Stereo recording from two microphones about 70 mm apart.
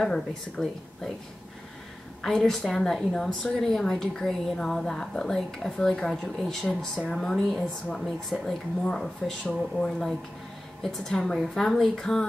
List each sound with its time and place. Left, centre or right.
0.0 s a woman's voice: centre
2.2 s a woman's voice: centre